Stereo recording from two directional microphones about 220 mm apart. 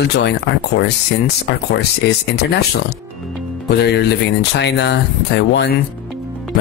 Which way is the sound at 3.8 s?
50° left (ahead or behind).